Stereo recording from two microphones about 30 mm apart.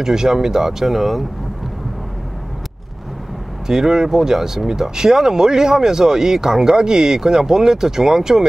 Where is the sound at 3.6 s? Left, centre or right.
Centre.